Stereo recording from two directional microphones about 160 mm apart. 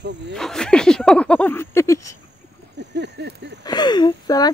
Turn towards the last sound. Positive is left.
turn(degrees=25)  # may be behind; listen again after turning